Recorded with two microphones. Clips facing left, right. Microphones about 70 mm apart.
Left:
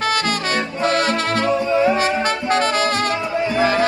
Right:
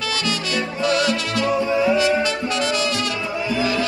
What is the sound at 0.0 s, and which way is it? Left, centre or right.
Music, left.